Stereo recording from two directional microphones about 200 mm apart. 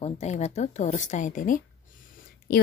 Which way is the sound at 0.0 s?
35° left (ahead or behind).